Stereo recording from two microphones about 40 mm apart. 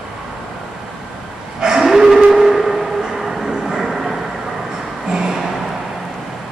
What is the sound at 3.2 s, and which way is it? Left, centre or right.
Train, centre.